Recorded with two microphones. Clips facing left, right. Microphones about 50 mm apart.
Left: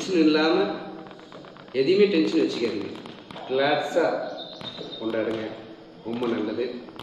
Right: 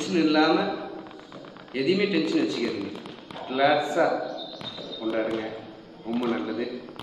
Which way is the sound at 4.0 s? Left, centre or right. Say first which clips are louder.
Left 3 dB; centre.